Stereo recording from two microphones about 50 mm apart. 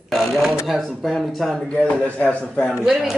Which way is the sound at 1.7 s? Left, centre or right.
Left.